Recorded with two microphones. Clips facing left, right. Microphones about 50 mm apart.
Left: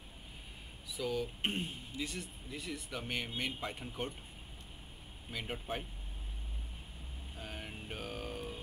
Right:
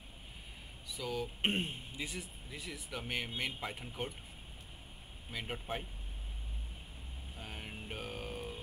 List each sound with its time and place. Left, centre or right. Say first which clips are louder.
0.8 s speech: left 3 dB; centre
1.4 s speech: right 3 dB; right
2.0 s speech: left 4 dB; centre
5.4 s speech: even; centre
7.3 s mantra: left 1 dB; centre